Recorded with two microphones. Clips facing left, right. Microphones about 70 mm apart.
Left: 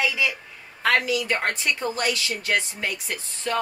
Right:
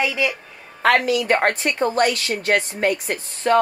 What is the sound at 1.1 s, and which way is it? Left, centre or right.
A woman's voice, right.